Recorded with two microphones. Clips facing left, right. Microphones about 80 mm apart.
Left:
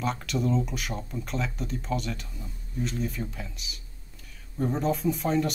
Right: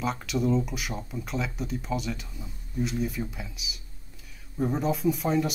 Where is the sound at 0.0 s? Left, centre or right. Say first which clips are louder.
Right 1 dB; centre.